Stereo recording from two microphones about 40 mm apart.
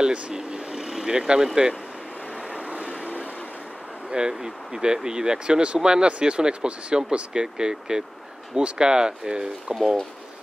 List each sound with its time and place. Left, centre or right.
0.0 s speech: right
2.5 s vehicle: right
4.1 s speech: centre